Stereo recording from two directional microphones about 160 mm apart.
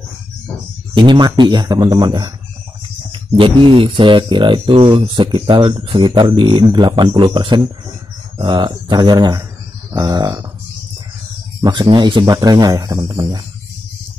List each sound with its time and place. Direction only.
0.9 s speech: 30° right (ahead or behind)
11.6 s speech: 30° right (ahead or behind)